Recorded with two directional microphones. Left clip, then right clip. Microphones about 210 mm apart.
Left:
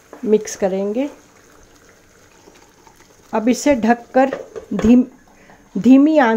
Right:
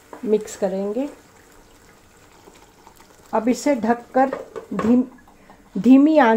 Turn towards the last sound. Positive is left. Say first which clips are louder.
# left 2 dB
turn(degrees=10)  # may be behind; listen again after turning